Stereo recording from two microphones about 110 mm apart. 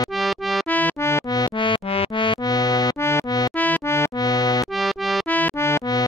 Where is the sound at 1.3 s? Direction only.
40° left (ahead or behind).